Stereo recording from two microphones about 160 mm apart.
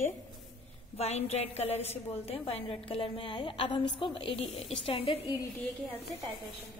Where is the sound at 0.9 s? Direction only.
40° left (ahead or behind).